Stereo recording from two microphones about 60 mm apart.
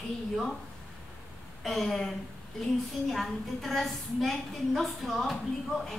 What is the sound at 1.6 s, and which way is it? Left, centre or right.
Speech, centre.